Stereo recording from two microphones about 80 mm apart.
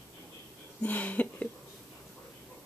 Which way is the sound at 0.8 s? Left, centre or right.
Left.